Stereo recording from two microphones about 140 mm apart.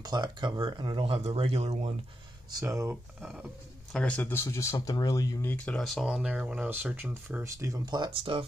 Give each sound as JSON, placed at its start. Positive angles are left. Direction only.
{"t": 0.0, "sound": "speech", "side_deg": -30}
{"t": 2.5, "sound": "speech", "side_deg": -20}
{"t": 3.2, "sound": "speech", "side_deg": -5}
{"t": 4.0, "sound": "speech", "side_deg": 10}
{"t": 5.5, "sound": "speech", "side_deg": 10}